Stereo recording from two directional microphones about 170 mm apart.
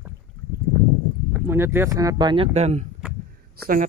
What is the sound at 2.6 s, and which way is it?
Speech, 40° right (ahead or behind).